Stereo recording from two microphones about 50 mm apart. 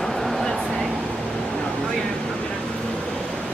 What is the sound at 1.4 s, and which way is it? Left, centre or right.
Vehicle, centre.